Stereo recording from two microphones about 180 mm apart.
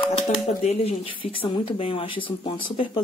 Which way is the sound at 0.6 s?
35° left (ahead or behind).